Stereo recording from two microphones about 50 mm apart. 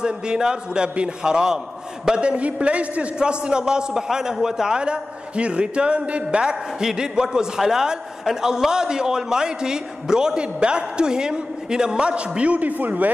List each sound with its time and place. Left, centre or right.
0.0 s a man's voice: centre; by 13.1 s right